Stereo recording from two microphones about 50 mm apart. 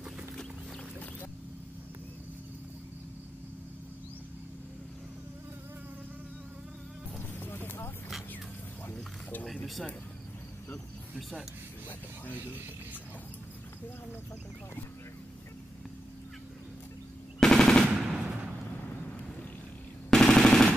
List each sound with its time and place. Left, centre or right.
7.3 s a sound: left
17.4 s machine gun: centre
20.1 s machine gun: centre